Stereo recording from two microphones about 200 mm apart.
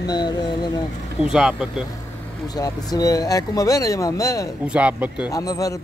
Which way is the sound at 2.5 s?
20° left (ahead or behind).